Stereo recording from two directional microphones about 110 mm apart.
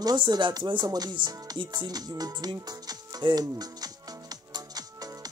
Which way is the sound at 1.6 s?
45° right (ahead or behind).